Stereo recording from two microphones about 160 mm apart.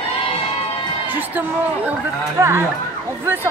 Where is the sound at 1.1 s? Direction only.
10° right (ahead or behind).